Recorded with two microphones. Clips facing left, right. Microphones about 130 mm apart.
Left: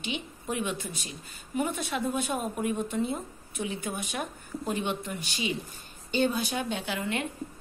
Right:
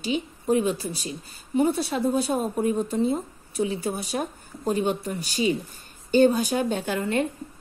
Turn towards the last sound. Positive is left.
turn(degrees=-40)  # may be behind; listen again after turning